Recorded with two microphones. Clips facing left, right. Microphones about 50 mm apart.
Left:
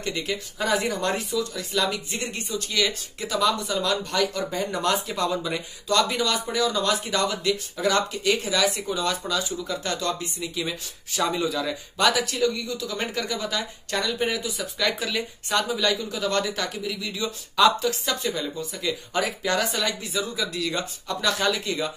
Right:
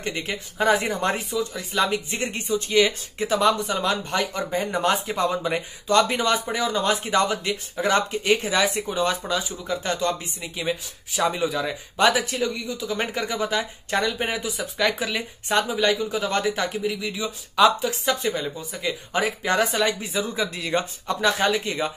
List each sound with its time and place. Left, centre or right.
0.0 s a man's voice: right